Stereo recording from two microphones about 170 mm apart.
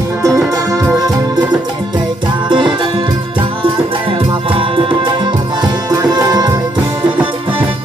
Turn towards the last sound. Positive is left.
turn(degrees=-20)  # may be behind; listen again after turning